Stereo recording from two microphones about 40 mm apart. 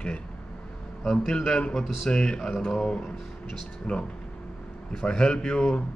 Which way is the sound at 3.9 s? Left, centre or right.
Left.